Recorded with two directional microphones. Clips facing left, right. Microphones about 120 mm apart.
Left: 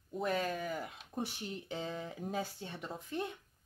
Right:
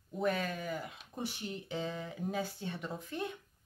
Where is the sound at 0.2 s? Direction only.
35° left (ahead or behind).